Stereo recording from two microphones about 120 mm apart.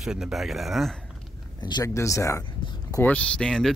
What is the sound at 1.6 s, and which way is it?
Speech, 35° left (ahead or behind).